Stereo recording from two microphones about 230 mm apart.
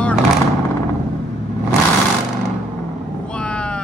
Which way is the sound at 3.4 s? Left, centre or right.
Centre.